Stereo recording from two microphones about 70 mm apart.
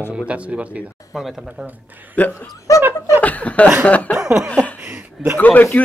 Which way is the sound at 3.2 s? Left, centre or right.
Left.